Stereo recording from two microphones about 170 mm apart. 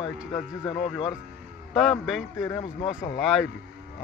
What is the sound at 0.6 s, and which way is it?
Speech, 35° left (ahead or behind).